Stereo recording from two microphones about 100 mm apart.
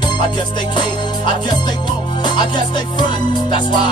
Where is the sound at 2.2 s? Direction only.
50° left (ahead or behind).